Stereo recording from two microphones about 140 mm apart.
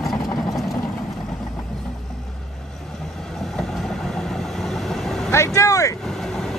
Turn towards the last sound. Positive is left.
turn(degrees=25)  # may be behind; listen again after turning